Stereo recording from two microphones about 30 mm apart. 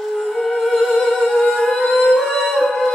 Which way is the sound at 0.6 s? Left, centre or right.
Centre.